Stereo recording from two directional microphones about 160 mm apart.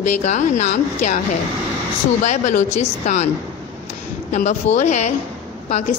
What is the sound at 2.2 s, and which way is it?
A woman's voice, 50° left (ahead or behind).